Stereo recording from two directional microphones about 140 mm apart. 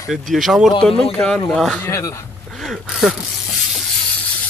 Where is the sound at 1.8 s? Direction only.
20° left (ahead or behind).